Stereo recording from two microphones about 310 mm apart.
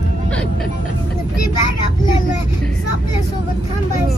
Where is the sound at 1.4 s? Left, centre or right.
Left.